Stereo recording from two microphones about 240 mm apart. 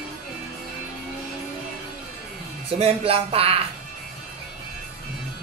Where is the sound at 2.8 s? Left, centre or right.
Right.